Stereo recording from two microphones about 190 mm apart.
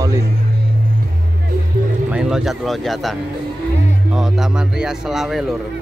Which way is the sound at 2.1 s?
5° right (ahead or behind).